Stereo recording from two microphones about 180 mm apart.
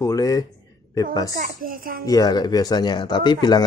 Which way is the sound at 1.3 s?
50° right (ahead or behind).